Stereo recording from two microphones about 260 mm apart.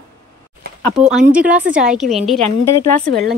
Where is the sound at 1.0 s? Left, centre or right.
Centre.